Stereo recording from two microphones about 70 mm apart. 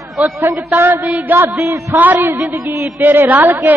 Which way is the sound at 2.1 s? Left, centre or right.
Right.